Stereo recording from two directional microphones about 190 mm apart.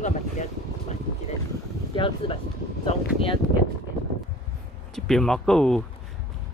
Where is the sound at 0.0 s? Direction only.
35° left (ahead or behind).